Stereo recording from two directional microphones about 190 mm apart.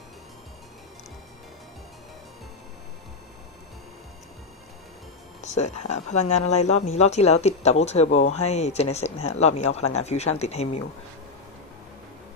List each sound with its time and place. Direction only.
5.4 s speech: 35° left (ahead or behind)